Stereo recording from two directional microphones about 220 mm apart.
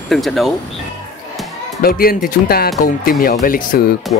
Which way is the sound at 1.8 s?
40° left (ahead or behind).